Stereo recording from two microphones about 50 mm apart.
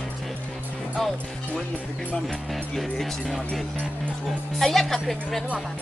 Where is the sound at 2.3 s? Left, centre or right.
Centre.